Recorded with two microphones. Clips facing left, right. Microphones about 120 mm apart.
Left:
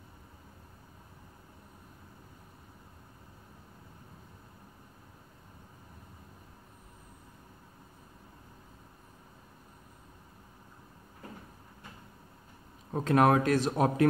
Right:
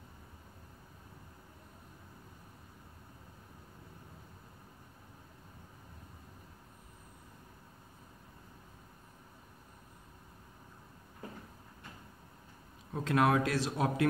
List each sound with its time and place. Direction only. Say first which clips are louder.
12.9 s a man's voice: left 5 dB; 45° left (ahead or behind)